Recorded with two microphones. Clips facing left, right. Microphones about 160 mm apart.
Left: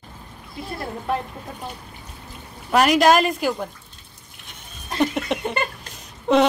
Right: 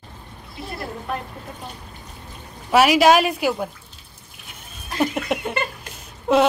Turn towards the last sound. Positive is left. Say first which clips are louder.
# even
turn(degrees=-5)  # may be behind; listen again after turning